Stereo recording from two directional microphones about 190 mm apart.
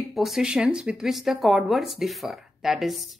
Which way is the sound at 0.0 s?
Centre (ahead or behind).